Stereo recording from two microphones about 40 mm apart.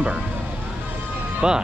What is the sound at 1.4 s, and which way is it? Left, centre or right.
Speech, centre.